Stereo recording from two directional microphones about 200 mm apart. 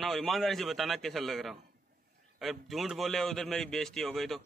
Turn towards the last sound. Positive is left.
turn(degrees=0)  # may be behind; listen again after turning